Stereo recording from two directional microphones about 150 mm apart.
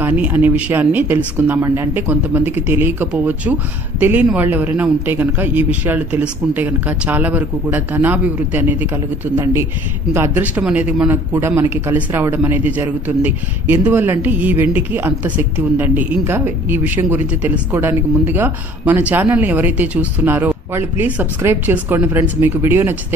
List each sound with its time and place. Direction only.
0.0 s a woman's voice: 10° right (ahead or behind)